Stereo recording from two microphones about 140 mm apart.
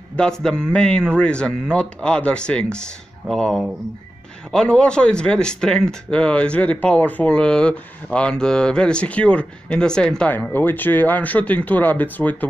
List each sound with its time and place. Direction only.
0.1 s speech: 5° left (ahead or behind)